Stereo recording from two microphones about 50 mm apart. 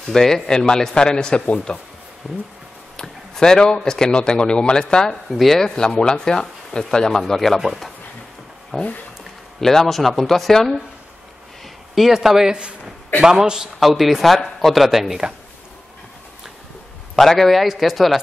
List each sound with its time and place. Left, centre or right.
0.0 s speech: centre
2.3 s speech: centre
3.0 s speech: centre
5.3 s speech: centre
11.9 s speech: centre
13.7 s speech: centre
17.1 s speech: centre